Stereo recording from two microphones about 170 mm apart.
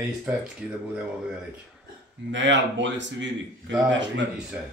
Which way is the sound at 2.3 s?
90° right.